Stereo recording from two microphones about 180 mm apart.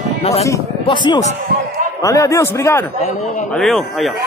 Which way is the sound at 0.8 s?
25° left (ahead or behind).